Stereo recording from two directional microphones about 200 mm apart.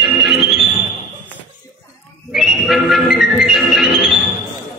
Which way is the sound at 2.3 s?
Centre (ahead or behind).